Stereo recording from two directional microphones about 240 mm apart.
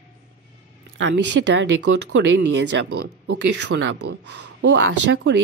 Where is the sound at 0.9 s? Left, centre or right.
Right.